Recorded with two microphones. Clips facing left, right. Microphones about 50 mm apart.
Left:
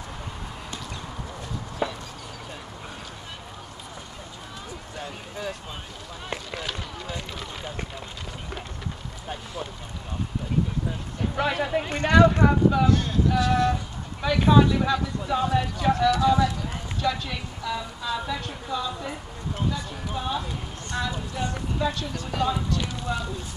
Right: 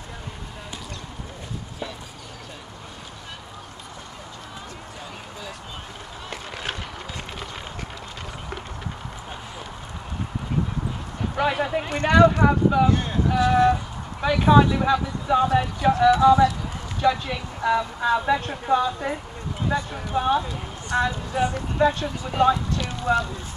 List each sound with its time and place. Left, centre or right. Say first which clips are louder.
6.5 s run: right 4 dB; right
11.3 s a sound: right 2 dB; centre
12.1 s speech: right 2 dB; centre
12.8 s speech: right 1 dB; right
13.3 s a sound: right 5 dB; centre
14.2 s speech: right 2 dB; centre
15.9 s speech: right 5 dB; right
17.6 s a woman's voice: right 11 dB; right
23.1 s a woman's voice: right 10 dB; right